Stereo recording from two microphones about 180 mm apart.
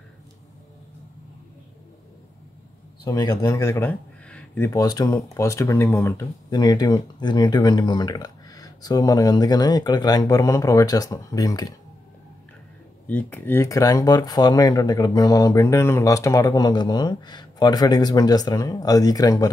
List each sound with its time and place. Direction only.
3.1 s speech: 20° left (ahead or behind)
4.6 s speech: 20° left (ahead or behind)
13.0 s speech: 10° left (ahead or behind)